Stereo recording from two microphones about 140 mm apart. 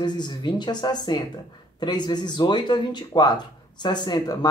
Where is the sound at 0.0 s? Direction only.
30° left (ahead or behind).